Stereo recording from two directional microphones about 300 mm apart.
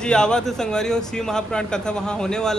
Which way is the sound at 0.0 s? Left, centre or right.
Centre.